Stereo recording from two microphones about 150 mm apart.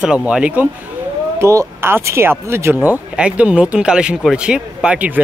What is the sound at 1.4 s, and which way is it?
Speech, 20° right (ahead or behind).